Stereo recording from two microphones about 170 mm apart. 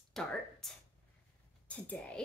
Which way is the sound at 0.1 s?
5° left (ahead or behind).